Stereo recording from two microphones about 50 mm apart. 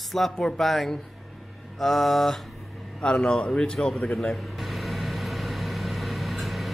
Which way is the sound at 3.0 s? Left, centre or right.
Left.